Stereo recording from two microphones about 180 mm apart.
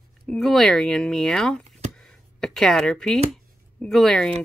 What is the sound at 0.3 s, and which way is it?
Speech, centre (ahead or behind).